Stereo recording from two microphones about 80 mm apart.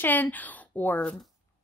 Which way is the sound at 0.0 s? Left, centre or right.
Left.